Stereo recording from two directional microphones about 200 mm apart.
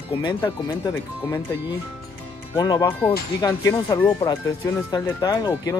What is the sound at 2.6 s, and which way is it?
Speech, 20° left (ahead or behind).